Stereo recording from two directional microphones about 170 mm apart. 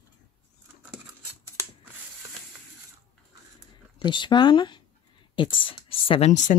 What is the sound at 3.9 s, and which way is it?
Speech, 25° left (ahead or behind).